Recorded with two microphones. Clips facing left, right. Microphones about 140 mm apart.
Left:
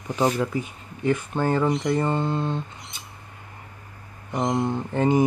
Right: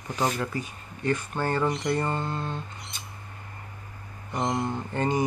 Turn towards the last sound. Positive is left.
turn(degrees=15)  # may be behind; listen again after turning